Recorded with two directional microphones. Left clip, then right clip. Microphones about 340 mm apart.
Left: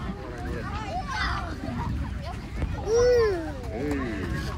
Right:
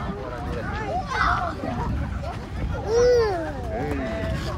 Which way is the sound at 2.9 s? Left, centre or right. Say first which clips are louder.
Right 2 dB; right.